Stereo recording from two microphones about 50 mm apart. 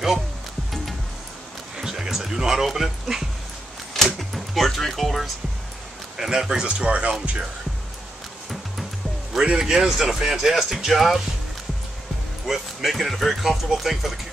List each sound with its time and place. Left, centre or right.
1.8 s speech: centre
3.9 s door: centre
6.1 s speech: centre
9.3 s speech: centre
12.4 s speech: centre